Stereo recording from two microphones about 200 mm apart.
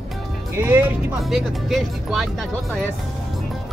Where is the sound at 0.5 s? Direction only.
10° right (ahead or behind).